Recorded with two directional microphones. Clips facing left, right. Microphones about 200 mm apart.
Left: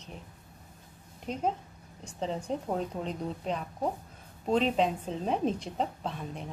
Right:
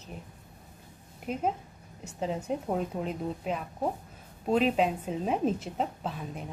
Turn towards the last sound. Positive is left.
turn(degrees=-5)  # may be behind; listen again after turning